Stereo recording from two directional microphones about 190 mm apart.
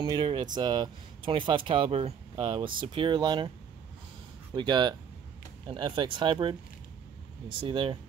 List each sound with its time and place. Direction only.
0.0 s speech: 25° right (ahead or behind)
4.6 s speech: 25° right (ahead or behind)